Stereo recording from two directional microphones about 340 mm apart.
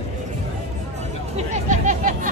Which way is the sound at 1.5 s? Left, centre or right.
Right.